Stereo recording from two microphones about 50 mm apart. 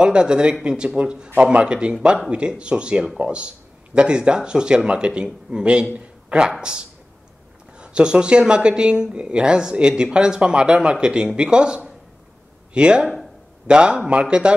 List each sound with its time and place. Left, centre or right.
0.0 s speech: centre
5.9 s a sound: right
6.6 s speech: centre